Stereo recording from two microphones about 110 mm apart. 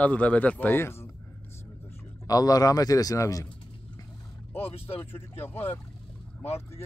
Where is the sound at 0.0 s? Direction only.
15° left (ahead or behind).